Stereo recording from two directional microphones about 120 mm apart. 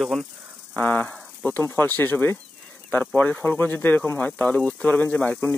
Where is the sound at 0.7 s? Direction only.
10° left (ahead or behind).